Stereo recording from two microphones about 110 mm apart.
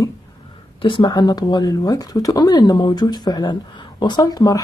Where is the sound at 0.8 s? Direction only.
50° left (ahead or behind).